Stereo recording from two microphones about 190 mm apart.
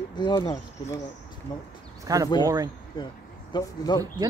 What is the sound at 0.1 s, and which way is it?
Speech, 25° left (ahead or behind).